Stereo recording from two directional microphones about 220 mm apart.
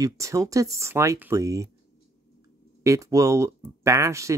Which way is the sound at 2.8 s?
15° right (ahead or behind).